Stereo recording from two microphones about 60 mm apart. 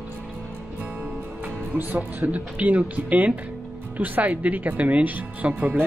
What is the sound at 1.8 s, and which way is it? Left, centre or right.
Speech, right.